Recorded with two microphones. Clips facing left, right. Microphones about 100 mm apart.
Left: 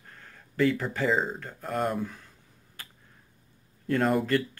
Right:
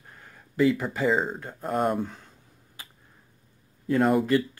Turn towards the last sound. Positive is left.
turn(degrees=-5)  # may be behind; listen again after turning